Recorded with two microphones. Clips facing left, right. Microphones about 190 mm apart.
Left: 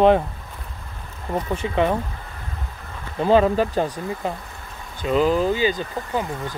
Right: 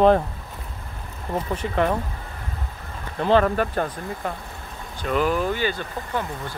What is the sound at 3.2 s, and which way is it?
Speech, 10° left (ahead or behind).